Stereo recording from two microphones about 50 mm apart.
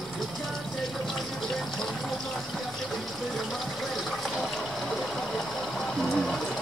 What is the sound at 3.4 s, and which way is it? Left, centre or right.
Water, centre.